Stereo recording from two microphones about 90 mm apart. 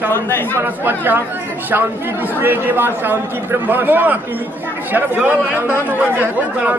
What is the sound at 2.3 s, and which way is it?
A man's voice, 20° right (ahead or behind).